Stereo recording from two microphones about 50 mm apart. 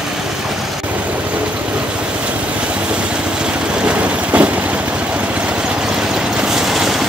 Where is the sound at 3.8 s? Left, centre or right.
Right.